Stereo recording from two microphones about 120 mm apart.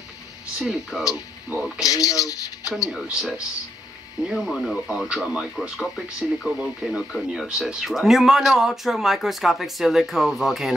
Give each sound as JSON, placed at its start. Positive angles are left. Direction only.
{"t": 0.6, "sound": "speech", "side_deg": -5}
{"t": 1.8, "sound": "speech", "side_deg": 30}
{"t": 2.9, "sound": "speech", "side_deg": 0}